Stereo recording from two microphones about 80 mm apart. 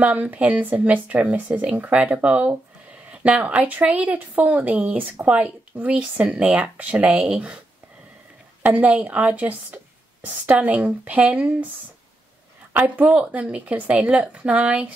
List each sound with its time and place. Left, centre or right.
0.0 s speech: right
8.6 s speech: centre
12.7 s speech: centre